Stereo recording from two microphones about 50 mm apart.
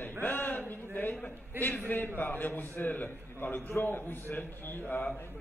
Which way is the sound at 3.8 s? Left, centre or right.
Left.